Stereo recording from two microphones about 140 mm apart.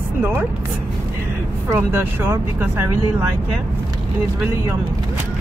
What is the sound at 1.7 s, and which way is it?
Speech, 15° right (ahead or behind).